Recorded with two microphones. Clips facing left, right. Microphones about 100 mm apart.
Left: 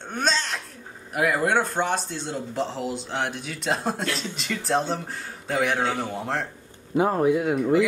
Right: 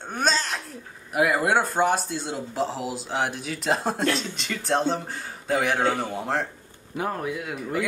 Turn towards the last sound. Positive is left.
turn(degrees=30)  # may be behind; listen again after turning